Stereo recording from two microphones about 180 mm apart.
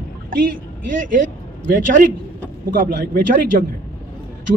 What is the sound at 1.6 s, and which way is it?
A man's voice, 50° right (ahead or behind).